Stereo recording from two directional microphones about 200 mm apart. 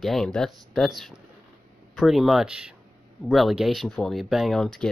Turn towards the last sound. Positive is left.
turn(degrees=5)  # may be behind; listen again after turning